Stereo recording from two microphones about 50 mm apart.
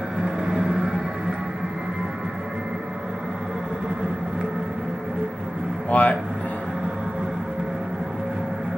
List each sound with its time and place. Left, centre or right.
0.2 s vehicle: centre
5.9 s music: left